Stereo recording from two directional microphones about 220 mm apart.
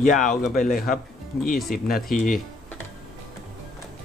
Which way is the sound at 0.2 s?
35° left (ahead or behind).